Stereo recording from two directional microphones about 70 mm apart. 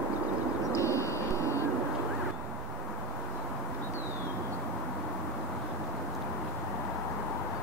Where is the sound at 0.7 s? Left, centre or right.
Left.